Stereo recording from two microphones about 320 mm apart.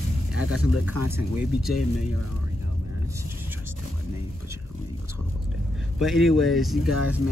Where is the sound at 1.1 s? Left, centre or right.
Centre.